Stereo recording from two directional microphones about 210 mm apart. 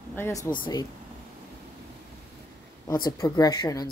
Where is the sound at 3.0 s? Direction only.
15° left (ahead or behind).